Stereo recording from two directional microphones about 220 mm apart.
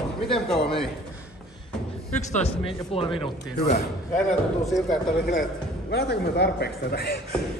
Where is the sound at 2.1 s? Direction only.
30° left (ahead or behind).